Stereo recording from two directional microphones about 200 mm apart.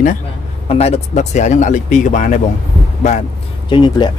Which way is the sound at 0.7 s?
30° left (ahead or behind).